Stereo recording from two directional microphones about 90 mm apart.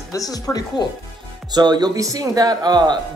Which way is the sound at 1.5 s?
50° right (ahead or behind).